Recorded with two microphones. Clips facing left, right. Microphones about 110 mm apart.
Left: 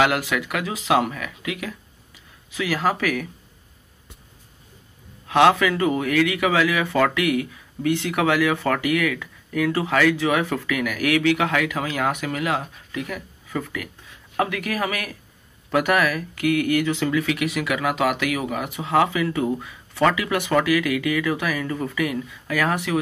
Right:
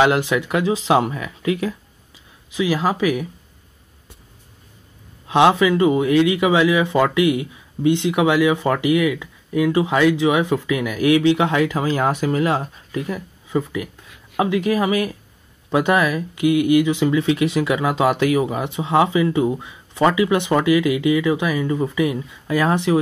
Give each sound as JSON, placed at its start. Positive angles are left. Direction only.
{"t": 0.0, "sound": "a man's voice", "side_deg": -25}
{"t": 2.5, "sound": "a man's voice", "side_deg": -20}
{"t": 5.2, "sound": "a man's voice", "side_deg": -20}